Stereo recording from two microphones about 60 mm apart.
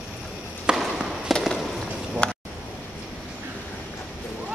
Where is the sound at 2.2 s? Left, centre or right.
Centre.